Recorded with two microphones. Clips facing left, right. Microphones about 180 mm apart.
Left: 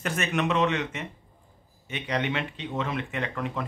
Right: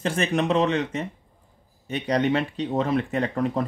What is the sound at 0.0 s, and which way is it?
Speech, 30° right (ahead or behind).